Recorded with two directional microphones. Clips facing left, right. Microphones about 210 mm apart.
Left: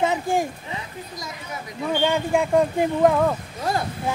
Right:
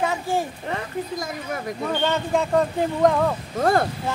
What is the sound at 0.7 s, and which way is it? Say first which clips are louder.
Speech: right 7 dB; 55° right (ahead or behind).